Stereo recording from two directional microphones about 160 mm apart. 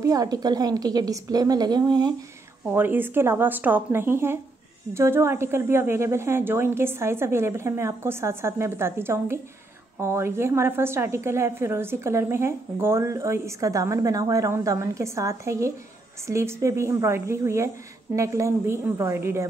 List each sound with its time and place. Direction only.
0.0 s a woman's voice: 20° right (ahead or behind)
2.6 s a woman's voice: 10° right (ahead or behind)